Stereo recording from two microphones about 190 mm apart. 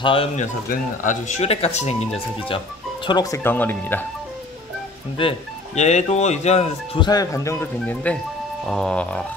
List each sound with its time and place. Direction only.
0.0 s a man's voice: 30° left (ahead or behind)
0.7 s speech: 40° left (ahead or behind)
3.1 s speech: 20° left (ahead or behind)
5.2 s a man's voice: 25° left (ahead or behind); by 9.2 s 5° left (ahead or behind)